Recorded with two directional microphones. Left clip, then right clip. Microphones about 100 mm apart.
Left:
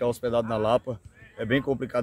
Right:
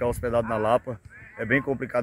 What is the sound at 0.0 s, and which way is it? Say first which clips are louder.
Speech: even; 20° left (ahead or behind).